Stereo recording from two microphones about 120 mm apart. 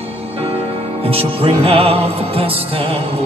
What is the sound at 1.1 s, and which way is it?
Music, 50° right (ahead or behind).